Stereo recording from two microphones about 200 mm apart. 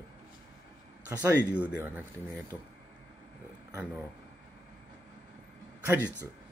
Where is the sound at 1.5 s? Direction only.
10° right (ahead or behind).